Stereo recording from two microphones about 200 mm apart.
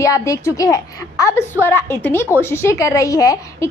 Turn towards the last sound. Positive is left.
turn(degrees=15)  # may be behind; listen again after turning